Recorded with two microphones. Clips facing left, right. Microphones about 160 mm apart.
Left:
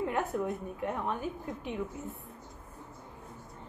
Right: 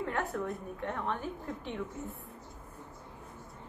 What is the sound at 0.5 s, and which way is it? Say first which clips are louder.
Speech: left 3 dB; 10° left (ahead or behind).